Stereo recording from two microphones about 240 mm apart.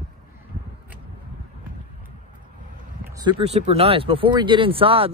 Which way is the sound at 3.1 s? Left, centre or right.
Centre.